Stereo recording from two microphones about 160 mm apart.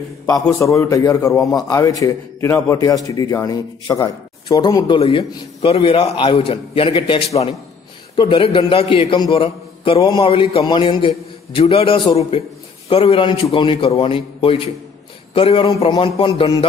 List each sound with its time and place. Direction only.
0.6 s a man's voice: 20° left (ahead or behind)